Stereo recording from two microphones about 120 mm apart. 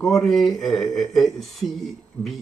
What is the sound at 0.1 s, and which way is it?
Speech, 5° left (ahead or behind).